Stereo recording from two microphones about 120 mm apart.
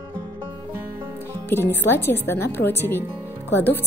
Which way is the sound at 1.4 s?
20° left (ahead or behind).